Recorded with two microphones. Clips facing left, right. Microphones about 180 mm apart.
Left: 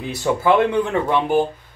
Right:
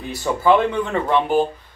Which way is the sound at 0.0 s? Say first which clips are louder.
Left 1 dB; 15° left (ahead or behind).